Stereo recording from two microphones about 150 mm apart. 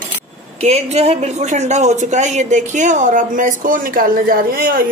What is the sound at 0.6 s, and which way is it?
A woman's voice, 45° right (ahead or behind).